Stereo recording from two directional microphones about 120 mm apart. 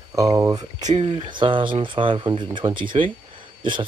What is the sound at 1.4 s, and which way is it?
Speech, 45° right (ahead or behind).